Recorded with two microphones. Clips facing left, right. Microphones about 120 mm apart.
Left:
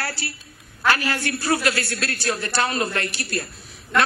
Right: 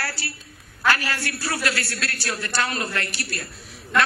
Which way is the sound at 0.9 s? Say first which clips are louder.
Left 2 dB; 20° left (ahead or behind).